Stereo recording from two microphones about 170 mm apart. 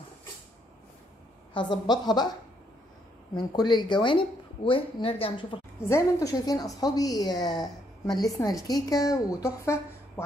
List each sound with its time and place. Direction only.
1.5 s a woman's voice: 25° left (ahead or behind)
3.3 s a woman's voice: 25° left (ahead or behind)
5.8 s a woman's voice: 15° left (ahead or behind)